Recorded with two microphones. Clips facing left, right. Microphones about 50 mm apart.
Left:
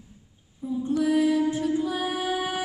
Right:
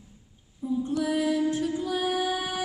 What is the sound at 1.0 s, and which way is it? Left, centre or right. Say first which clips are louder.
Music: left 5 dB; centre.